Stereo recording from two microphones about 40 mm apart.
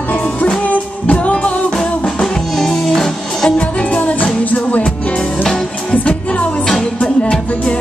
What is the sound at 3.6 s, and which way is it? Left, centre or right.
Music, left.